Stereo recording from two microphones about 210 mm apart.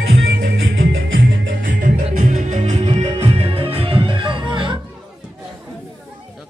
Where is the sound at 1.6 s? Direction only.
40° right (ahead or behind); by 4.8 s 20° right (ahead or behind).